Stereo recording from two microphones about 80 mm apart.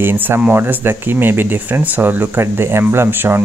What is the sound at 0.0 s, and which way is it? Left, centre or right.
Speech, right.